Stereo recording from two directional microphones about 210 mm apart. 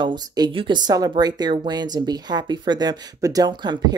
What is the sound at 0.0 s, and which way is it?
Speech, 20° right (ahead or behind).